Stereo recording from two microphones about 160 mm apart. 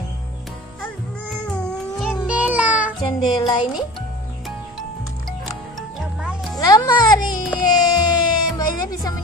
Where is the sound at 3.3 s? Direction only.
25° left (ahead or behind).